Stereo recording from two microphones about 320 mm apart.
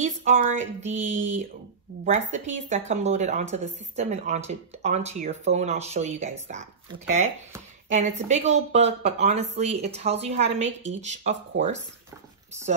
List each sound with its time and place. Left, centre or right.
0.0 s speech: right